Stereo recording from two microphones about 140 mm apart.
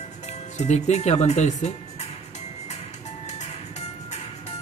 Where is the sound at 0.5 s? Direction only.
55° left (ahead or behind).